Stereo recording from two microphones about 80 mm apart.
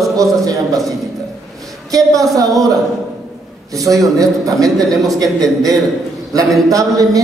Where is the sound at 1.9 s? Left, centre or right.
Right.